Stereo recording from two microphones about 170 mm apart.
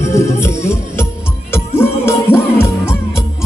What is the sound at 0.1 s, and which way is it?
Music, 15° left (ahead or behind).